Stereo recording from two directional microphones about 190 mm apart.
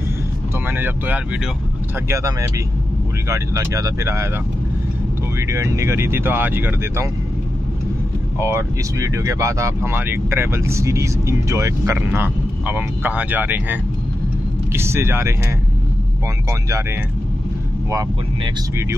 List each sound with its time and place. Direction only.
0.7 s speech: 10° right (ahead or behind)
5.5 s speech: 15° right (ahead or behind)
8.4 s speech: 15° right (ahead or behind)
17.9 s speech: 15° right (ahead or behind)